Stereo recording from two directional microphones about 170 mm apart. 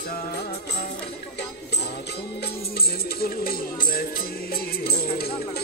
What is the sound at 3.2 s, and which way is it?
Music, 60° left (ahead or behind).